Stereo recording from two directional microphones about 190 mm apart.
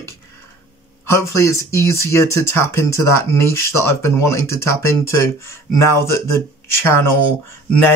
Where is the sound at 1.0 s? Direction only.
15° left (ahead or behind).